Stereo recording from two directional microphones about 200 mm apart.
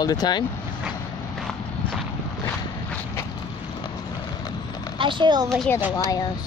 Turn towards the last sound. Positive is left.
turn(degrees=15)  # may be behind; listen again after turning